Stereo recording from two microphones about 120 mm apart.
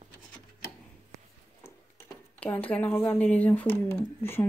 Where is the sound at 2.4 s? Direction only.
15° left (ahead or behind).